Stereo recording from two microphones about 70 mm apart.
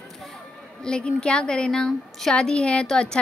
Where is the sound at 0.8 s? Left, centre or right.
Centre.